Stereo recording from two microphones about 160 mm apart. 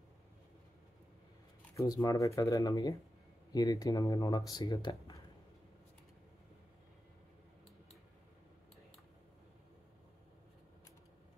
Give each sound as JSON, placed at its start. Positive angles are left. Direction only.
{"t": 1.8, "sound": "speech", "side_deg": 20}